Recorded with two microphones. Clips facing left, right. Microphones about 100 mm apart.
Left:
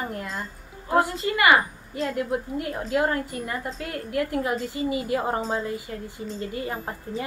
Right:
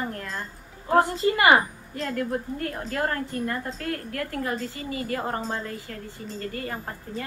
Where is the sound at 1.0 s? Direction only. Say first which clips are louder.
Right 1 dB; 30° right (ahead or behind).